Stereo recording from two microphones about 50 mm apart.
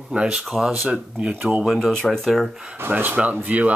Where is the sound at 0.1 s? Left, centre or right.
Right.